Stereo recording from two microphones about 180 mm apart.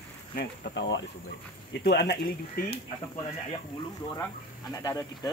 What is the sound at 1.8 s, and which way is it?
Speech, 70° left (ahead or behind).